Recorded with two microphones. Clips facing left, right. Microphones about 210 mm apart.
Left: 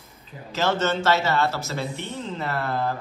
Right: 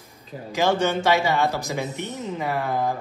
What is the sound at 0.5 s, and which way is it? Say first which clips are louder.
Speech: right 2 dB; 15° right (ahead or behind).